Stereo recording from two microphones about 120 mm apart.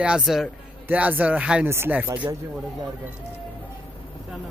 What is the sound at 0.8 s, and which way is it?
Speech, 15° right (ahead or behind).